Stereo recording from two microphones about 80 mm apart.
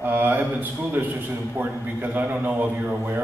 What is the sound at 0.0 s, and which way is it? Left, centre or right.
A man's voice, right.